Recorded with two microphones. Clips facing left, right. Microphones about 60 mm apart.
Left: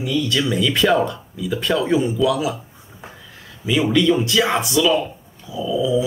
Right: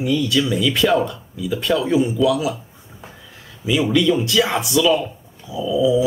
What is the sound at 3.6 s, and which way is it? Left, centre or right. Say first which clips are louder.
Speech: even; centre.